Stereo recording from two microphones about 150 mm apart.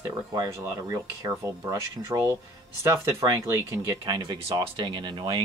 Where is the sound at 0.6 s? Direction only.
20° right (ahead or behind).